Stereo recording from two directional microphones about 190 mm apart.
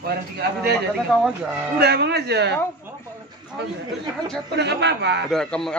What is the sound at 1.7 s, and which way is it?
Speech, 60° right (ahead or behind).